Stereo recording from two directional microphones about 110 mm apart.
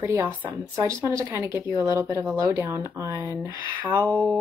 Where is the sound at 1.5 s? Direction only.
20° right (ahead or behind).